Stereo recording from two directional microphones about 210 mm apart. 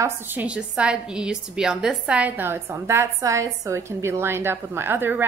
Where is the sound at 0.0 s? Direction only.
10° right (ahead or behind).